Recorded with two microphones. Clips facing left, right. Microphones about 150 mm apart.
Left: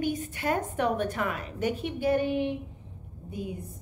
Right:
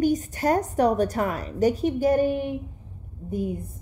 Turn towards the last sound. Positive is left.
turn(degrees=-45)  # may be behind; listen again after turning